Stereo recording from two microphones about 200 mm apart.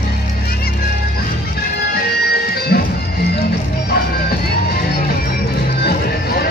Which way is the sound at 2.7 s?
55° left (ahead or behind).